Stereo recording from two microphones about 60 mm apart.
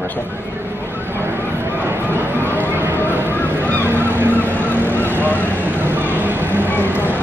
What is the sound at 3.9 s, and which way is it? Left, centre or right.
Honk, right.